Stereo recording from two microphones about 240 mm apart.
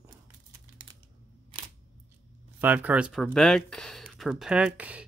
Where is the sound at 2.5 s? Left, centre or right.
Centre.